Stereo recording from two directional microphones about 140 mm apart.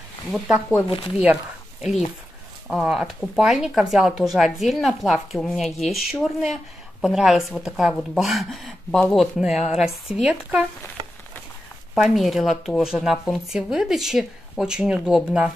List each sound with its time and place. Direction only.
0.3 s speech: 5° right (ahead or behind)
0.8 s speech: 40° left (ahead or behind)
1.1 s speech: 5° right (ahead or behind)
11.9 s speech: centre (ahead or behind)